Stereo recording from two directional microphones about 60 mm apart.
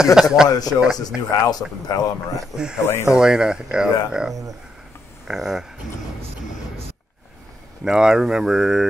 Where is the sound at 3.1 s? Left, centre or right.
Centre.